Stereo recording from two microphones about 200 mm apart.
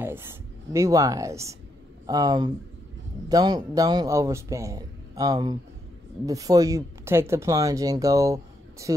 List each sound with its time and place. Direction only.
0.0 s speech: 10° right (ahead or behind)